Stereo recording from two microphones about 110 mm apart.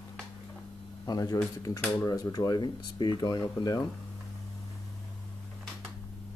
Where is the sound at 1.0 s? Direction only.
35° left (ahead or behind).